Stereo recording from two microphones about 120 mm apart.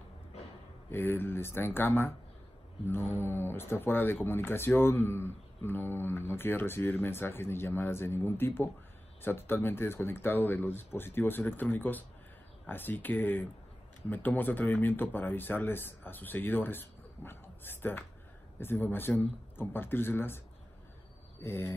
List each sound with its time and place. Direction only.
0.9 s speech: 20° left (ahead or behind)
21.4 s speech: 20° left (ahead or behind)